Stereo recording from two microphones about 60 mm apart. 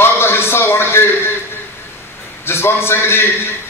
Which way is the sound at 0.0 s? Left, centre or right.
Left.